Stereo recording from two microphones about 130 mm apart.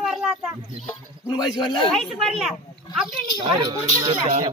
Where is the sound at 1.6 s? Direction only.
40° left (ahead or behind).